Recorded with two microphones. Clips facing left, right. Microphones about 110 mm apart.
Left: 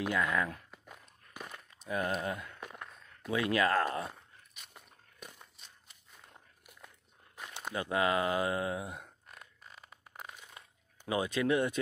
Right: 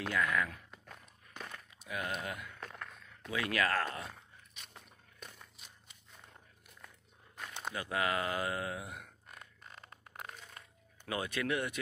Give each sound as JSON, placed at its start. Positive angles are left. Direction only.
{"t": 0.0, "sound": "speech", "side_deg": 15}
{"t": 0.7, "sound": "walk", "side_deg": 5}
{"t": 1.9, "sound": "speech", "side_deg": 35}
{"t": 2.6, "sound": "a sound", "side_deg": 15}
{"t": 3.3, "sound": "speech", "side_deg": 20}
{"t": 7.7, "sound": "speech", "side_deg": 25}
{"t": 9.3, "sound": "a sound", "side_deg": 0}
{"t": 11.1, "sound": "speech", "side_deg": 20}